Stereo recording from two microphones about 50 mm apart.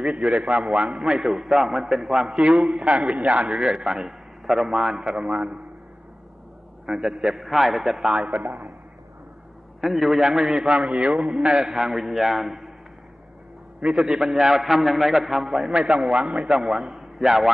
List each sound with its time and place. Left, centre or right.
0.0 s a man's voice: right; by 2.3 s centre
2.3 s a man's voice: centre
6.9 s a man's voice: centre
7.3 s a man's voice: centre
8.3 s a man's voice: right
9.8 s a man's voice: centre
11.1 s a man's voice: centre
13.8 s a man's voice: centre